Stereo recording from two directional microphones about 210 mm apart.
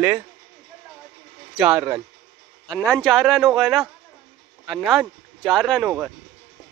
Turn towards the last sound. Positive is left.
turn(degrees=0)  # may be behind; listen again after turning